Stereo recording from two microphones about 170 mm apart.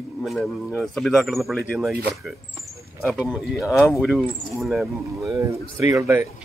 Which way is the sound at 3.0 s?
5° right (ahead or behind).